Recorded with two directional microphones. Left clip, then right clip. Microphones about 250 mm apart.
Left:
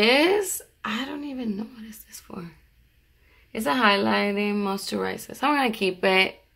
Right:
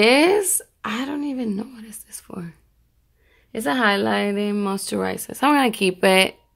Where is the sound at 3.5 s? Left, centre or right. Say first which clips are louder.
Right 1 dB; right.